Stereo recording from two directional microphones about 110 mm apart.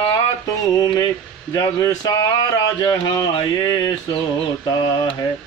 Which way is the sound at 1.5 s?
30° left (ahead or behind).